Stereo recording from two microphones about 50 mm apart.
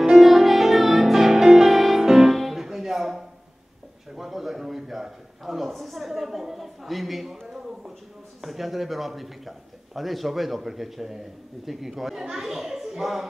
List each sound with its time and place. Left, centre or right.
0.0 s music: centre
4.1 s a sound: centre
8.4 s a man's voice: centre